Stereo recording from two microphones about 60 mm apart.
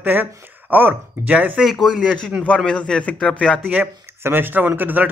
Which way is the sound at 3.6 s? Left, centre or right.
Right.